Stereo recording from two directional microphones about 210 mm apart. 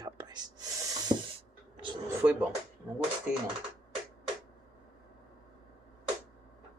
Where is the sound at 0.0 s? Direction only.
20° right (ahead or behind).